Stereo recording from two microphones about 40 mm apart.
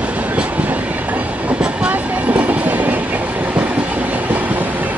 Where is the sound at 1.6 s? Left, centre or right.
Right.